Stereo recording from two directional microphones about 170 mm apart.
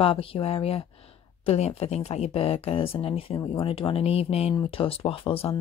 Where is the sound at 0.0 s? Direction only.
35° left (ahead or behind).